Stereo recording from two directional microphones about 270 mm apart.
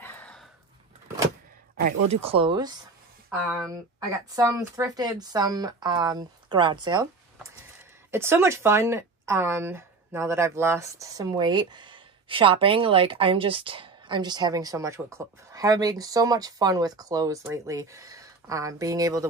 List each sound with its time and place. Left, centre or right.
0.0 s a sound: centre
2.0 s speech: right
2.2 s speech: centre
4.4 s speech: centre
8.1 s speech: centre